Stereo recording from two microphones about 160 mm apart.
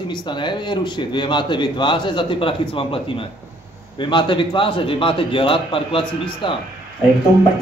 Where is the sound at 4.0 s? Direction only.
30° left (ahead or behind).